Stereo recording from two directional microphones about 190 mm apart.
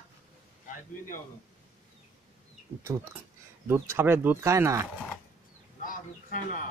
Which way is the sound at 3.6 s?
15° right (ahead or behind).